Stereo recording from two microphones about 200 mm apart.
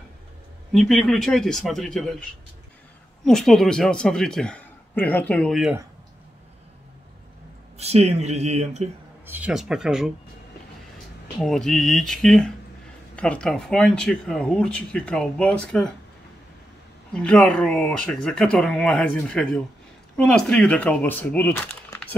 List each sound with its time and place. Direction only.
0.7 s speech: centre (ahead or behind)
3.3 s speech: centre (ahead or behind)
7.7 s speech: 30° right (ahead or behind)
9.2 s speech: 10° right (ahead or behind)
11.3 s speech: centre (ahead or behind)
17.1 s speech: 5° left (ahead or behind)